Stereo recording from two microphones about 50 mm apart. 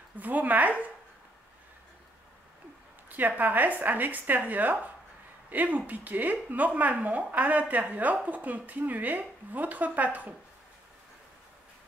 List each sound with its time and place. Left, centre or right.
0.2 s speech: right
3.1 s speech: right